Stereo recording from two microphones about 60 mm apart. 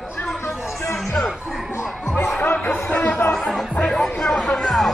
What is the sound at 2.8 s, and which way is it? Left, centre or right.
Chatter, centre.